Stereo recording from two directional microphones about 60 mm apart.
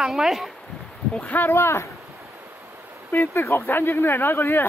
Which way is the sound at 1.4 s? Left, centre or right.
Left.